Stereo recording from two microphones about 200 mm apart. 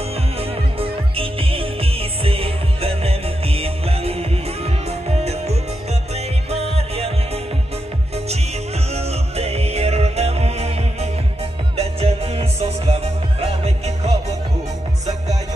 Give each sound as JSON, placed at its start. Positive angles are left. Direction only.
{"t": 0.4, "sound": "music", "side_deg": -30}
{"t": 8.9, "sound": "music", "side_deg": -30}